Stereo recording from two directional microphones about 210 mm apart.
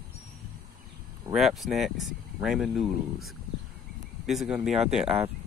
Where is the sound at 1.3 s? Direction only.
Centre (ahead or behind).